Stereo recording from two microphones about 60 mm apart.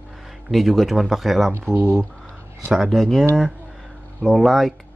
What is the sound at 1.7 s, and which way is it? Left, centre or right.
Speech, right.